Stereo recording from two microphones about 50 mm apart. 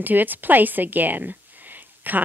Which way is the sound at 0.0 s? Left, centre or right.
Right.